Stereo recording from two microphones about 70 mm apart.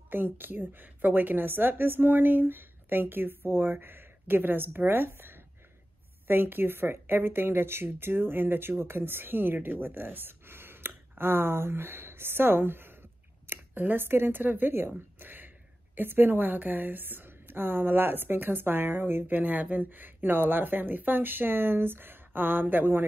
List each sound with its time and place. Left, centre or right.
0.1 s a woman's voice: right